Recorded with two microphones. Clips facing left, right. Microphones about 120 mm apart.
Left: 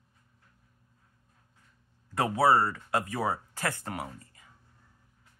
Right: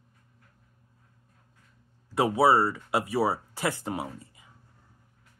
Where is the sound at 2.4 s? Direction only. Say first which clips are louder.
Even; 5° right (ahead or behind); by 4.1 s 20° right (ahead or behind).